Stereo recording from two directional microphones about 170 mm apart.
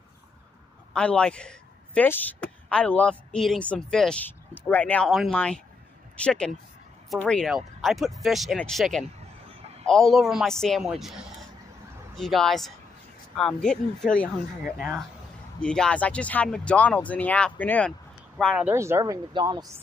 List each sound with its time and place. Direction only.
0.9 s a woman's voice: 5° left (ahead or behind)
14.6 s speech: 5° right (ahead or behind)
15.6 s speech: 5° left (ahead or behind)
18.7 s speech: 15° right (ahead or behind)